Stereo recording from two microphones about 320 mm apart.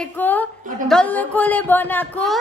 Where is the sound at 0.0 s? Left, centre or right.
Centre.